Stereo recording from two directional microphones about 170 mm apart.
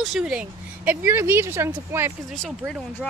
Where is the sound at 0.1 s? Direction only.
5° right (ahead or behind).